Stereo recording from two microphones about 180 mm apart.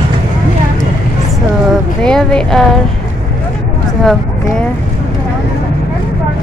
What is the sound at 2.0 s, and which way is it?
Speech, 5° left (ahead or behind).